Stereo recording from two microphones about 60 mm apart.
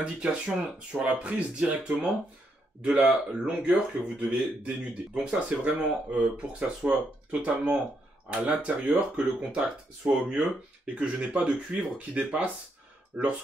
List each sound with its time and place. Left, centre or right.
0.0 s speech: centre